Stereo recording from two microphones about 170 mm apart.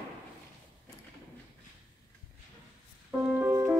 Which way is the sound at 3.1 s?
10° right (ahead or behind).